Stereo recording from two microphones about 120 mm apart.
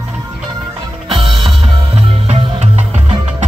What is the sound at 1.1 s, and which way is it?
Music, 45° right (ahead or behind).